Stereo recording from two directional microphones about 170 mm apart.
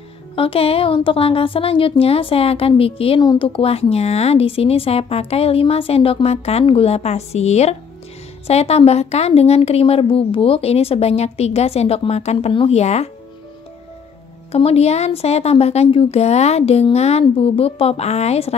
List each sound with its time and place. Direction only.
0.4 s a woman's voice: 35° left (ahead or behind)
14.5 s a woman's voice: 35° left (ahead or behind)